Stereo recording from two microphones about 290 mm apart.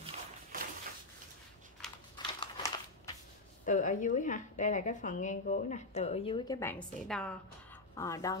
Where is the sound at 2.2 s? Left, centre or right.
Centre.